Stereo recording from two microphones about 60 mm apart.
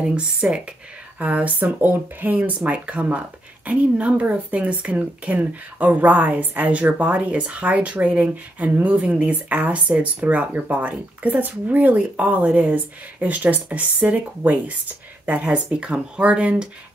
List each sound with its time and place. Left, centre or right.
0.0 s a woman's voice: centre